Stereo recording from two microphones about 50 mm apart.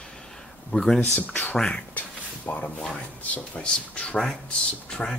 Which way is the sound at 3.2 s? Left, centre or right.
Left.